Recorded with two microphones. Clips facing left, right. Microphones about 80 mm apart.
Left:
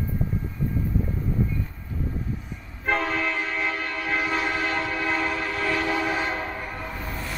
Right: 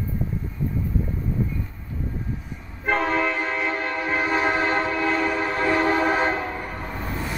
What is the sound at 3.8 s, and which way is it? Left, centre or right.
Train, right.